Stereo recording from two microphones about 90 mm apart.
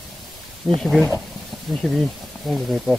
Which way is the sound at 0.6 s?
10° right (ahead or behind).